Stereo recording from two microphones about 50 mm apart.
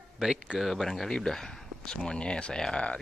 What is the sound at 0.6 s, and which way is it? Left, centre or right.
Speech, centre.